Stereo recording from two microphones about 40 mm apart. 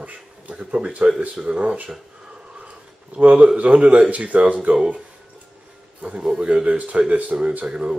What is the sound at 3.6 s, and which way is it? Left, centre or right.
Speech, right.